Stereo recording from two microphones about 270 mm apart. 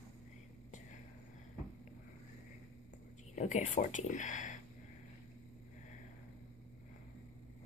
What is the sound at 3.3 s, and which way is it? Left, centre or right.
Speech, left.